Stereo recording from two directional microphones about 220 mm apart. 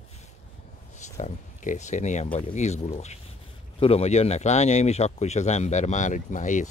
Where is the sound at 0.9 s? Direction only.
30° left (ahead or behind).